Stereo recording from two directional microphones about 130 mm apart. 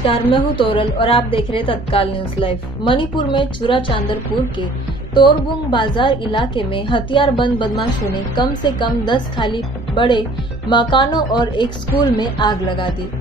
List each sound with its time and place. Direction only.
0.0 s a woman's voice: 40° left (ahead or behind)
5.1 s a woman's voice: 35° left (ahead or behind)